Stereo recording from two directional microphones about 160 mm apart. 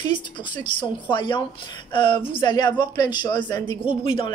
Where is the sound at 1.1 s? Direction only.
30° left (ahead or behind).